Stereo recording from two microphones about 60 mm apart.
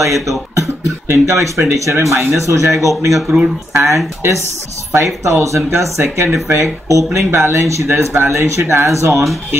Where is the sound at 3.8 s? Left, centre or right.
Right.